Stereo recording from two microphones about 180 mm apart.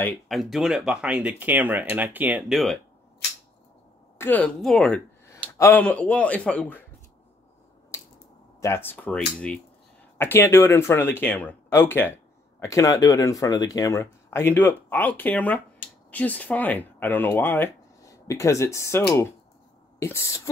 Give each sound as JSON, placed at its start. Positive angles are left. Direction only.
{"t": 0.3, "sound": "speech", "side_deg": 0}
{"t": 4.2, "sound": "speech", "side_deg": 10}
{"t": 5.2, "sound": "speech", "side_deg": 15}
{"t": 8.5, "sound": "speech", "side_deg": 15}